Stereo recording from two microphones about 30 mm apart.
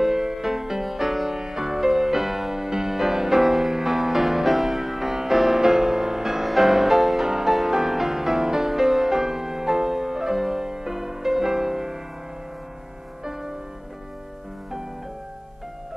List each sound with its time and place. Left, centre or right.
0.0 s music: centre
13.2 s music: centre